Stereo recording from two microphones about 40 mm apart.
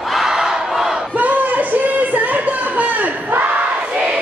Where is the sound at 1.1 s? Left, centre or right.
Right.